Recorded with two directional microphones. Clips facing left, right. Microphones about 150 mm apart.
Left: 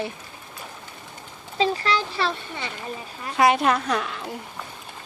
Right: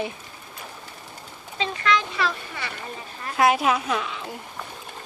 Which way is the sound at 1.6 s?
35° left (ahead or behind).